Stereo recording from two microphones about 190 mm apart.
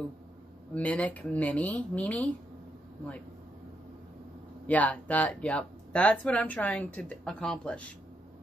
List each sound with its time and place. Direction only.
0.7 s speech: 5° left (ahead or behind)
4.6 s speech: 10° left (ahead or behind)